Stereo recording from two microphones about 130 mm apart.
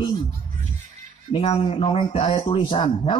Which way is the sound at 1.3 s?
50° left (ahead or behind).